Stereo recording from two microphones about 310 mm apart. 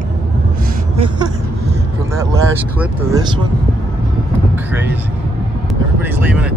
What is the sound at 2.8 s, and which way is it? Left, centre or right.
Speech, centre.